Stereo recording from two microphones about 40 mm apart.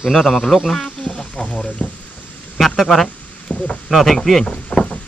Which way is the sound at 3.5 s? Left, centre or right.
Left.